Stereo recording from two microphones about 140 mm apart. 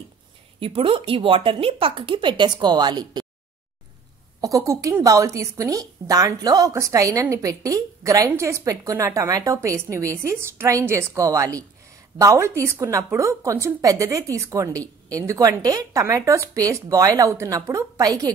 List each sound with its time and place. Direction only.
0.6 s speech: 40° right (ahead or behind)
4.4 s speech: 25° right (ahead or behind)